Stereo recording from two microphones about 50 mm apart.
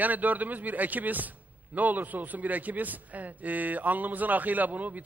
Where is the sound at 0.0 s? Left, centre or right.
Right.